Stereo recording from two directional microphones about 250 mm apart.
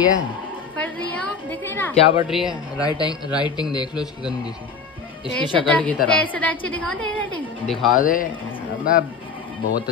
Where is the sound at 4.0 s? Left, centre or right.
Centre.